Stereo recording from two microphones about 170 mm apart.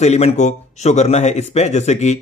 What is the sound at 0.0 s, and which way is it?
Speech, 40° left (ahead or behind).